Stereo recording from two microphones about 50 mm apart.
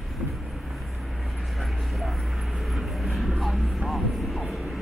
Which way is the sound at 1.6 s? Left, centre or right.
Centre.